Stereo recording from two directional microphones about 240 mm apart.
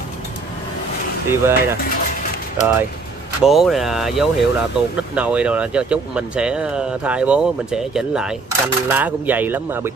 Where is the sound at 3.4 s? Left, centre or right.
Centre.